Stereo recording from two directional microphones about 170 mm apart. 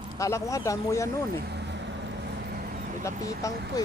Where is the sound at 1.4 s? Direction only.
85° right; by 2.9 s 60° right (ahead or behind).